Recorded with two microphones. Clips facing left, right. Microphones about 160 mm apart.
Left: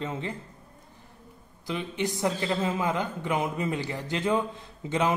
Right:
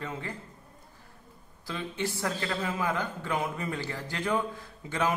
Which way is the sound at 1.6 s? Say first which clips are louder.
Left 3 dB; 15° left (ahead or behind).